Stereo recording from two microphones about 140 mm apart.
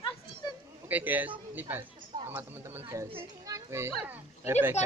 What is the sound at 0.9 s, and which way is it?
Speech, 10° right (ahead or behind).